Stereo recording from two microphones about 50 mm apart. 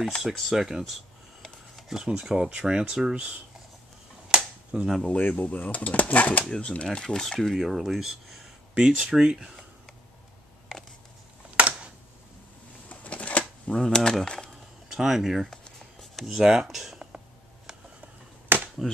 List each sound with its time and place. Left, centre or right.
0.0 s a sound: centre
2.0 s speech: centre
4.3 s a sound: centre
5.0 s speech: left
6.4 s speech: centre
7.0 s speech: centre
7.3 s speech: centre
11.5 s camera: right
12.8 s a sound: left
13.7 s speech: centre
14.9 s speech: centre
15.8 s a sound: centre
16.3 s speech: centre
18.5 s finger snapping: right